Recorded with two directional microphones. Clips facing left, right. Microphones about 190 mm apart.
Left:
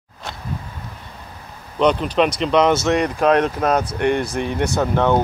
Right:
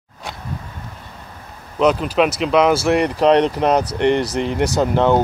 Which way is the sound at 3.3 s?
15° right (ahead or behind).